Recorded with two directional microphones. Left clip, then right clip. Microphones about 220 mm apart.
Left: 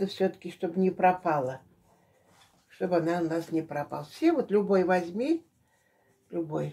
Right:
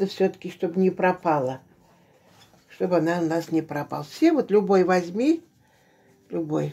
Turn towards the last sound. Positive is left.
turn(degrees=-40)  # may be behind; listen again after turning